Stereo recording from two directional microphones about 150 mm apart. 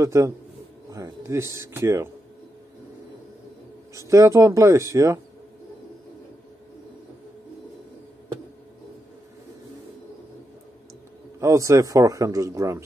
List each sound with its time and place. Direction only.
0.0 s a man's voice: 20° right (ahead or behind)
4.1 s a man's voice: 20° right (ahead or behind)
11.3 s a man's voice: 20° right (ahead or behind)